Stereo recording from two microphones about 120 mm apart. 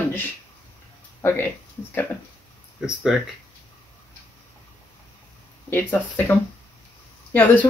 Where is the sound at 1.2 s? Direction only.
20° left (ahead or behind).